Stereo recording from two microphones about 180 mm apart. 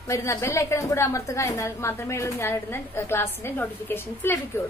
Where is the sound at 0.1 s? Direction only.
15° left (ahead or behind).